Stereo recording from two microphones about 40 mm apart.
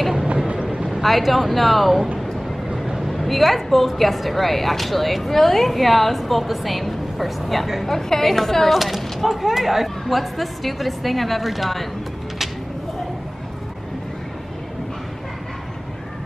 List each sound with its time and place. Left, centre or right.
0.5 s vehicle: right
0.7 s a sound: centre
1.0 s a woman's voice: centre